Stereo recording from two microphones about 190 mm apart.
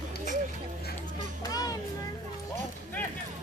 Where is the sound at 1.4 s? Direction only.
20° left (ahead or behind).